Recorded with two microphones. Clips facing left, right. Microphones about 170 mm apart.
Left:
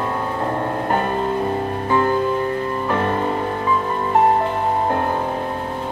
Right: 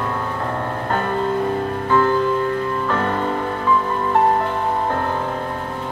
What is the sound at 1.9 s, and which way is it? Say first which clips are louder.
Music: right 1 dB; 20° left (ahead or behind).